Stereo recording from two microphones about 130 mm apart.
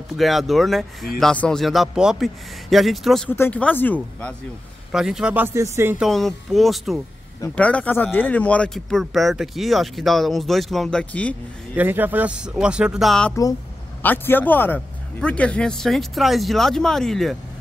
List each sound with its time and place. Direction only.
0.2 s speech: centre (ahead or behind)
3.3 s speech: 15° left (ahead or behind)
4.9 s speech: 5° right (ahead or behind); by 5.9 s 20° right (ahead or behind)
5.9 s speech: centre (ahead or behind)
7.5 s speech: 10° left (ahead or behind)
11.7 s speech: 15° right (ahead or behind)
13.3 s speech: 25° left (ahead or behind)
14.0 s speech: 15° left (ahead or behind)